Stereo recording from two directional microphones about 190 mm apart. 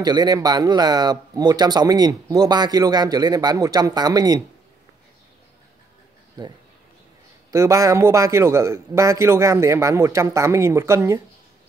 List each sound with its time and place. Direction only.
0.0 s speech: 20° right (ahead or behind)
6.4 s speech: 20° right (ahead or behind)
7.5 s a man's voice: 15° right (ahead or behind)